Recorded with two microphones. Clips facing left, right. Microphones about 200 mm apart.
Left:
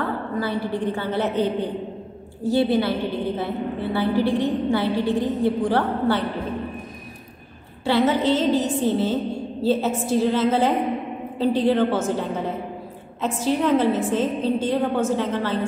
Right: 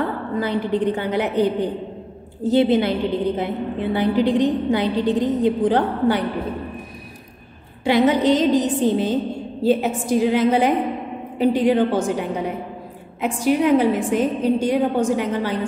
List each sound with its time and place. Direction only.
0.4 s a woman's voice: 20° right (ahead or behind)
7.8 s a woman's voice: 15° right (ahead or behind)